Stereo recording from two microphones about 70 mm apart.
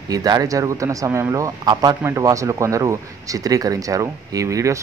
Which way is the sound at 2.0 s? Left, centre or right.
Right.